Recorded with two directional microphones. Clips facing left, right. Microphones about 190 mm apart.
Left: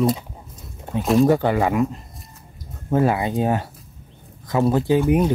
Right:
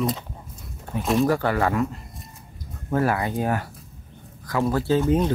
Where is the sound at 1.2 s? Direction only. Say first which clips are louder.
Left 3 dB; 20° left (ahead or behind).